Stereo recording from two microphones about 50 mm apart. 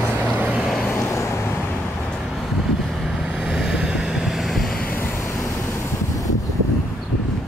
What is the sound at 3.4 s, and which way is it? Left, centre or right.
Vehicle, centre.